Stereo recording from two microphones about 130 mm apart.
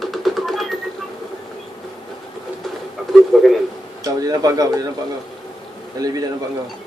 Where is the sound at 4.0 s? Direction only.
25° right (ahead or behind).